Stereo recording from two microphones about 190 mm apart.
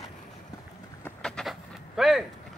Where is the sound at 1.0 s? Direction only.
5° left (ahead or behind).